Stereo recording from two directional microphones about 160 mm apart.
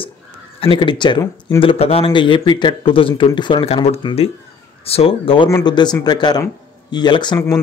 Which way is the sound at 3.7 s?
40° left (ahead or behind).